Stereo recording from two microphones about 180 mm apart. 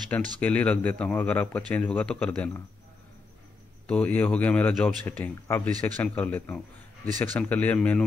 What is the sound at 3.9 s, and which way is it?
Speech, 10° left (ahead or behind).